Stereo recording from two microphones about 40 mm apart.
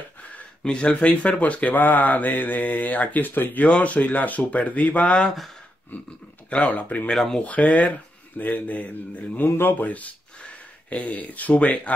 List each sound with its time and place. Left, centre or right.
0.7 s speech: left
3.6 s speech: left
9.4 s speech: left